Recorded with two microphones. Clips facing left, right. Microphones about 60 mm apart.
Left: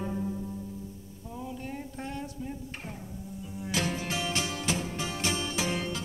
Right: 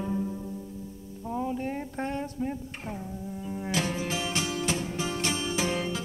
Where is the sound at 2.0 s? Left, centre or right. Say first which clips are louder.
Right 8 dB; right.